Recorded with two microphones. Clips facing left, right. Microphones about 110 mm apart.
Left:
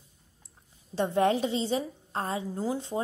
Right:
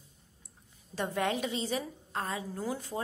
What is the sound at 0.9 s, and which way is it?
A woman's voice, 30° left (ahead or behind).